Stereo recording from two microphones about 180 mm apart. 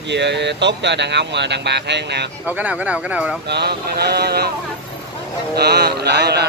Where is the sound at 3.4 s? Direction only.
65° right (ahead or behind).